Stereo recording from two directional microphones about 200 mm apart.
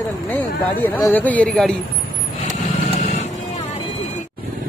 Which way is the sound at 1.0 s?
10° left (ahead or behind).